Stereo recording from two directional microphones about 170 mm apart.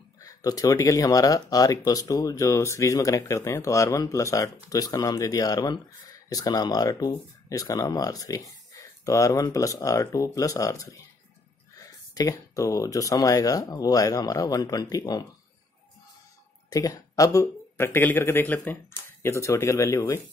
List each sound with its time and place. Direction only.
0.2 s speech: 20° left (ahead or behind)
16.7 s speech: 20° left (ahead or behind)